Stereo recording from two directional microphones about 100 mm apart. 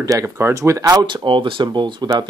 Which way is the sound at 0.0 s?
35° right (ahead or behind).